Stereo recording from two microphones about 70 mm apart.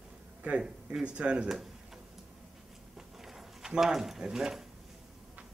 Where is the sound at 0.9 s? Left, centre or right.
Centre.